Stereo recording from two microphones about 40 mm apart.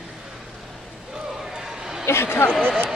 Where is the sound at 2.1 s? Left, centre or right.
Left.